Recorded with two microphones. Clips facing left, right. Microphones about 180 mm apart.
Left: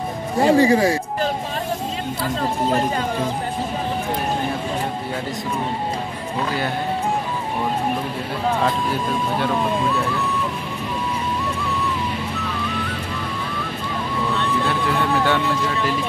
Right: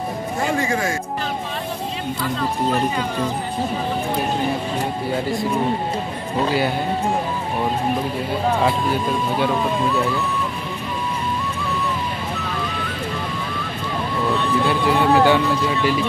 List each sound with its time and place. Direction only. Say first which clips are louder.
0.4 s speech: left 8 dB; 35° left (ahead or behind)
14.6 s speech: right 3 dB; centre (ahead or behind)